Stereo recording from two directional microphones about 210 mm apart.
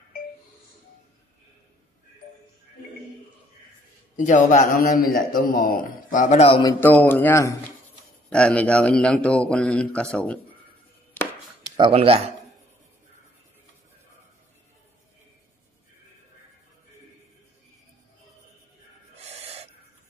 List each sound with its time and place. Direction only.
4.2 s a man's voice: 35° left (ahead or behind)
6.6 s a man's voice: 10° left (ahead or behind)
11.7 s speech: 25° right (ahead or behind)
19.2 s owl: 30° right (ahead or behind)